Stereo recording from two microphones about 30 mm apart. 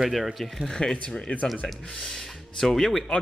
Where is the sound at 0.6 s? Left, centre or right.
Left.